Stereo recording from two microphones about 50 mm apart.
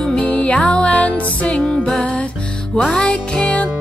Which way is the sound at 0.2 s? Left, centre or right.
Left.